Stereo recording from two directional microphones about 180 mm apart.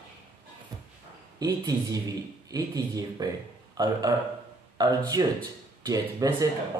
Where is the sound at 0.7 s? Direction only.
20° right (ahead or behind).